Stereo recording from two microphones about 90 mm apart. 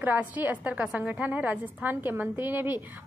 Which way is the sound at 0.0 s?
20° right (ahead or behind).